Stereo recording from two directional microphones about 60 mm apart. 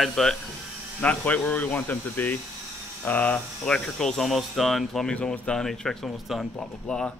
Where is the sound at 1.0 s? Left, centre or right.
Left.